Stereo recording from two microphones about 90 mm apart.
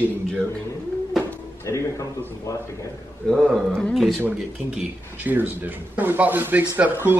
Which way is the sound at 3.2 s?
5° left (ahead or behind).